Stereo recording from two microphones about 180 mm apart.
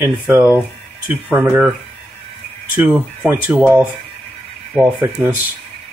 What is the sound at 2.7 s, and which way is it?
Speech, 5° right (ahead or behind).